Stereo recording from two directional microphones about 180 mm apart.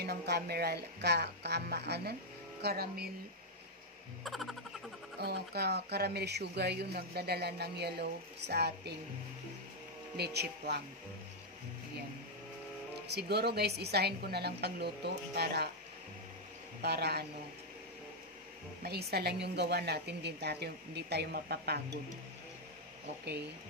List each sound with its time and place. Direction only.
0.0 s speech: 65° right (ahead or behind)
4.2 s a sound: centre (ahead or behind)
5.2 s speech: 65° right (ahead or behind)
10.1 s speech: 65° right (ahead or behind)
13.1 s speech: 65° right (ahead or behind)
16.8 s speech: 65° right (ahead or behind)
18.8 s speech: 60° right (ahead or behind)